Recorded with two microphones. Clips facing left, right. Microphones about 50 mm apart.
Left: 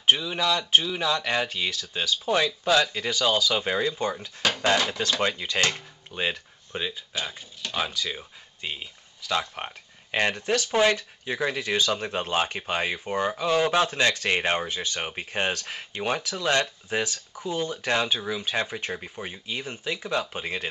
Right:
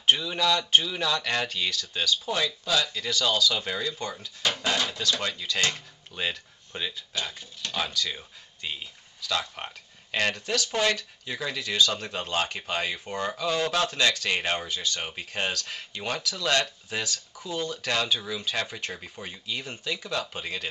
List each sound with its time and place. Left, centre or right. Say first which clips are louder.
0.0 s speech: left 1 dB; centre
2.2 s speech: left 5 dB; left
6.1 s speech: left 3 dB; centre
19.8 s speech: left 4 dB; centre